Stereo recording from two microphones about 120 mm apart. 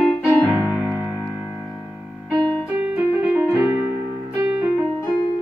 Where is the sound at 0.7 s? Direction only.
Centre (ahead or behind).